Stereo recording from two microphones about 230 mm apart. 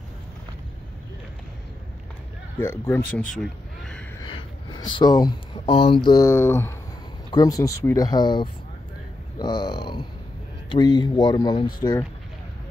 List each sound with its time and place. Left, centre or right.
2.6 s speech: centre
4.2 s a sound: centre
6.0 s speech: centre